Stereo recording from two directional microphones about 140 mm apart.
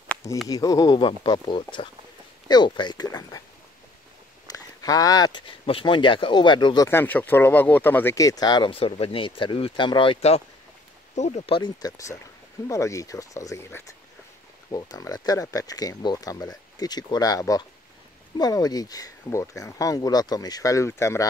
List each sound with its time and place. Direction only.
0.5 s speech: 25° left (ahead or behind)
4.5 s a sound: 25° left (ahead or behind)
5.7 s speech: 40° left (ahead or behind)
6.9 s speech: 15° left (ahead or behind); by 11.7 s 40° left (ahead or behind)
11.8 s speech: 25° left (ahead or behind)